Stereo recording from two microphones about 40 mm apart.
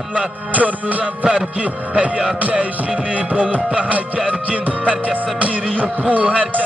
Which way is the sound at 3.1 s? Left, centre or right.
Right.